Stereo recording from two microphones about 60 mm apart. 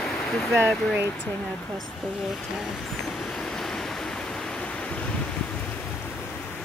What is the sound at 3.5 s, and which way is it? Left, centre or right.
Waves, centre.